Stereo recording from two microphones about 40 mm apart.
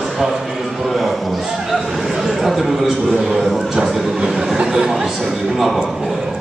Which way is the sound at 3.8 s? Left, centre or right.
Centre.